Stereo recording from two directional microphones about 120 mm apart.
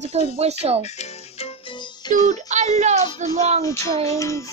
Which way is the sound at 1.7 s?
40° left (ahead or behind).